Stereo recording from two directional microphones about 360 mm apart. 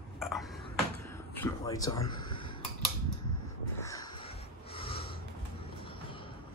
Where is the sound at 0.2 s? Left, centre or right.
Centre.